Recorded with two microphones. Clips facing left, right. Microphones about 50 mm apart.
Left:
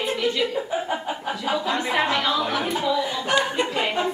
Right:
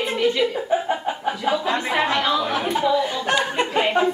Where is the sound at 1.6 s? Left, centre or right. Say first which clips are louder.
Right 1 dB; right.